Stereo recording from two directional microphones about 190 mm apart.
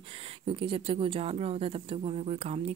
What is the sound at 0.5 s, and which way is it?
Speech, 25° right (ahead or behind).